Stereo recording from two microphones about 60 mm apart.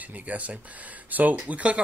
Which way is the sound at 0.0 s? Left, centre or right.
Right.